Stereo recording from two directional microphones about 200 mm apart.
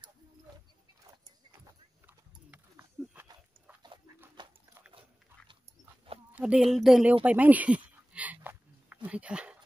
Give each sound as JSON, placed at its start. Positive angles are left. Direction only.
{"t": 3.2, "sound": "pig", "side_deg": -10}
{"t": 4.4, "sound": "dog", "side_deg": -20}
{"t": 6.3, "sound": "speech", "side_deg": -5}
{"t": 7.2, "sound": "a sound", "side_deg": -10}